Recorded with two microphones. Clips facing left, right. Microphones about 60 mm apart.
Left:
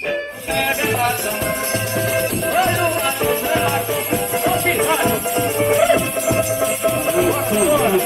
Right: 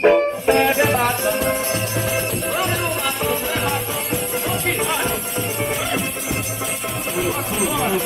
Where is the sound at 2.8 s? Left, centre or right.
Centre.